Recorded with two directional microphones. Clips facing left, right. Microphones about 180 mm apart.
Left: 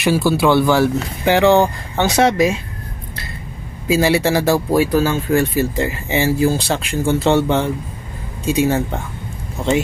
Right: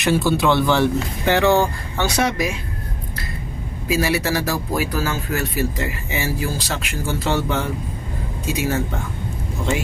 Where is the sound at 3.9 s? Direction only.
30° left (ahead or behind).